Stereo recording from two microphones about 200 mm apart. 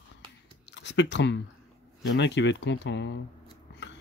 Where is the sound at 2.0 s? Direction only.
60° left (ahead or behind).